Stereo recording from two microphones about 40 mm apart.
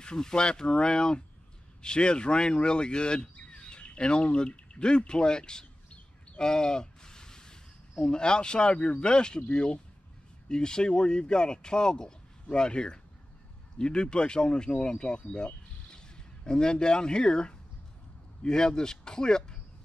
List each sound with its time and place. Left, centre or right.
0.0 s a man's voice: centre